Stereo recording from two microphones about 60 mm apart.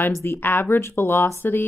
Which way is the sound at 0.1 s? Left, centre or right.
Left.